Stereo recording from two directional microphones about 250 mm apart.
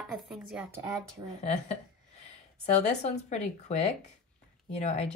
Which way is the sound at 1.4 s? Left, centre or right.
Left.